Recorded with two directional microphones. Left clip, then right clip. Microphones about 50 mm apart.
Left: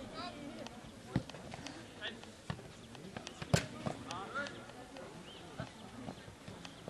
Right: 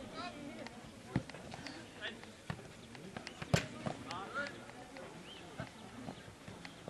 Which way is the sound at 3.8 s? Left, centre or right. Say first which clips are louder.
Even; centre.